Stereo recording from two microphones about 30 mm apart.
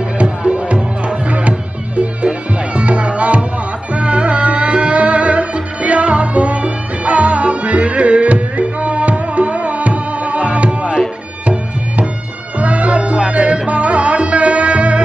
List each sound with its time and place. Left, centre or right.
0.2 s music: right
12.5 s music: right